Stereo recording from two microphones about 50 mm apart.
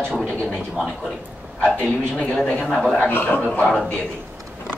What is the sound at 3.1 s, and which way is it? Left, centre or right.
Speech, left.